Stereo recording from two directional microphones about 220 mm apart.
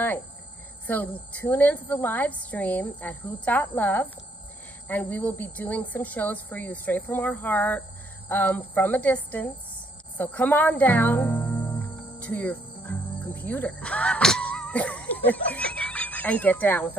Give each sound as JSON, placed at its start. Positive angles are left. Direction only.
{"t": 0.8, "sound": "a woman's voice", "side_deg": 5}